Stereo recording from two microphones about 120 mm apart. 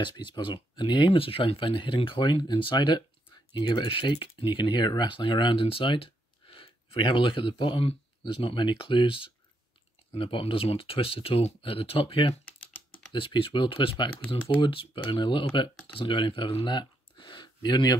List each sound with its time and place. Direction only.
0.0 s speech: 40° left (ahead or behind)